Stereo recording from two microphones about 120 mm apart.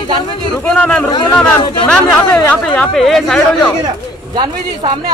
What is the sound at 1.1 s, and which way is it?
Speech, 40° left (ahead or behind).